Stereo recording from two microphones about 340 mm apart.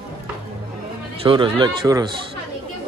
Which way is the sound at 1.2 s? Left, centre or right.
Centre.